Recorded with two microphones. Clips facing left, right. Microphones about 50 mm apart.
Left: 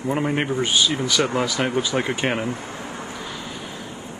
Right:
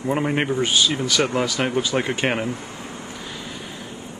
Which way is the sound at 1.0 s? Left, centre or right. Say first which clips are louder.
Even; centre.